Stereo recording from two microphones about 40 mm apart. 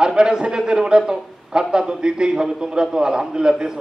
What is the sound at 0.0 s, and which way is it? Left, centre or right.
A man's voice, centre.